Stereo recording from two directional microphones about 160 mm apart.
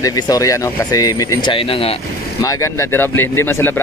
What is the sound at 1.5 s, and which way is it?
Speech, 35° left (ahead or behind).